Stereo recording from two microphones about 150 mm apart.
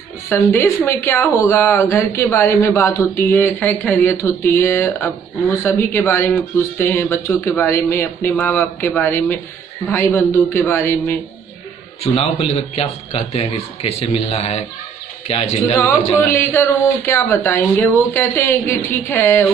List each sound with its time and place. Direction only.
0.3 s speech: 15° left (ahead or behind)
12.0 s a man's voice: 40° left (ahead or behind)
16.2 s speech: 15° left (ahead or behind)